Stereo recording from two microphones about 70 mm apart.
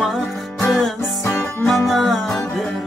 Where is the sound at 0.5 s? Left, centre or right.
Centre.